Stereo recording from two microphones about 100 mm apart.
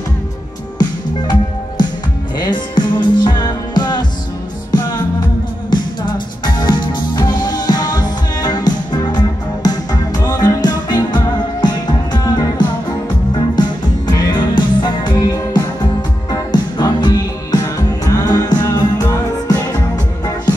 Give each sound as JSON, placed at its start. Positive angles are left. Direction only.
{"t": 0.7, "sound": "music", "side_deg": 45}
{"t": 5.7, "sound": "music", "side_deg": 50}